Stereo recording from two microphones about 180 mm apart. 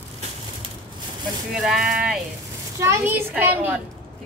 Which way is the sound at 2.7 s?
15° right (ahead or behind).